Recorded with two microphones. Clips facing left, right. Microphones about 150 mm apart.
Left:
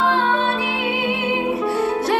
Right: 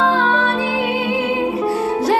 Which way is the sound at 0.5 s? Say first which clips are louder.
Right 3 dB; 30° right (ahead or behind).